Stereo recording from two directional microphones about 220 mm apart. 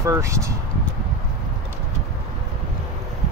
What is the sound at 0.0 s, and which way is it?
Speech, 15° right (ahead or behind).